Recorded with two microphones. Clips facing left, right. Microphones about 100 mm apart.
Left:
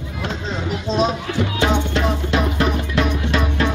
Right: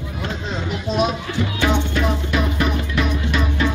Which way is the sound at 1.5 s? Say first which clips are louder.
Even; 25° left (ahead or behind).